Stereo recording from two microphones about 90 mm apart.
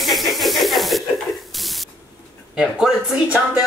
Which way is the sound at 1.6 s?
Centre (ahead or behind).